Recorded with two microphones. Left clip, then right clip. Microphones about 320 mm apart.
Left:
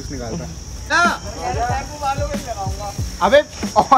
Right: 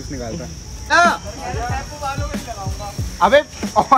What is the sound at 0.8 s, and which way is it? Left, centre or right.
Speech, centre.